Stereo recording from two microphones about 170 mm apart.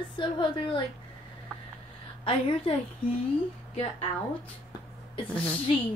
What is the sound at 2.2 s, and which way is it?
Speech, 30° left (ahead or behind).